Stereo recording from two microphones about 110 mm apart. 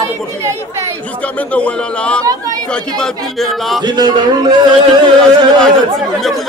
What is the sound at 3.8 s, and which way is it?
Speech, 40° right (ahead or behind).